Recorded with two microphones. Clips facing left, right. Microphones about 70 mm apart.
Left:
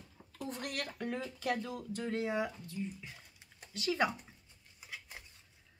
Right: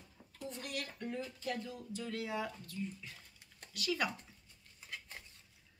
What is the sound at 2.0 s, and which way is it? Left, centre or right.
Speech, left.